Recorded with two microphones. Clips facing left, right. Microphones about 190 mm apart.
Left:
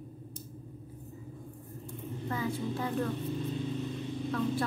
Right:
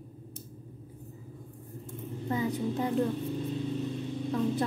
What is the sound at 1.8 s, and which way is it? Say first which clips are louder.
Vehicle: right 1 dB; 20° right (ahead or behind).